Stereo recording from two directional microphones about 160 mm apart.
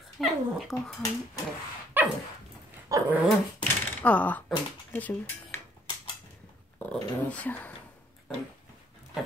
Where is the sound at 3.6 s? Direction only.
10° left (ahead or behind).